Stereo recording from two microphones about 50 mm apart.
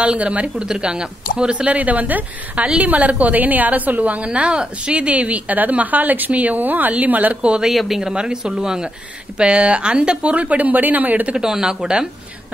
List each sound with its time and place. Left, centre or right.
0.0 s speech: right
7.6 s a woman's voice: centre
8.1 s speech: centre; by 11.3 s right
11.3 s speech: centre